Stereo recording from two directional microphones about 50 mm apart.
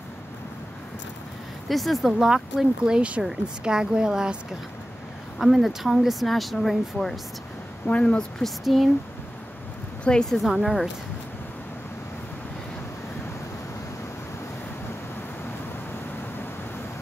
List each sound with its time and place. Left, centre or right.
1.7 s speech: centre
2.0 s a woman's voice: centre
5.4 s speech: centre
7.8 s a woman's voice: left
8.4 s speech: centre
10.1 s a woman's voice: left
10.5 s speech: centre